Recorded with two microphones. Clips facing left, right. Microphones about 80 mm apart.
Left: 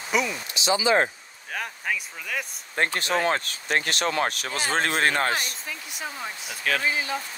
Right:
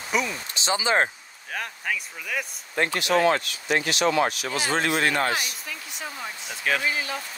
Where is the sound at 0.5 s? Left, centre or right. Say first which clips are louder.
Left 2 dB; right.